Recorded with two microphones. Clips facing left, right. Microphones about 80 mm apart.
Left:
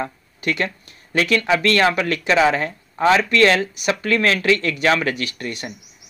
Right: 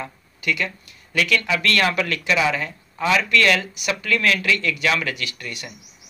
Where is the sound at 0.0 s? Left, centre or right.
Left.